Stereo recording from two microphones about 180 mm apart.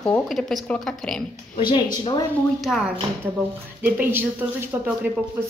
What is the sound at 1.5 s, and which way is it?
Speech, 25° left (ahead or behind).